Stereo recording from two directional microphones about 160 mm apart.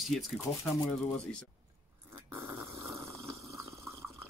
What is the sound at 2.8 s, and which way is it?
Snoring, 20° right (ahead or behind).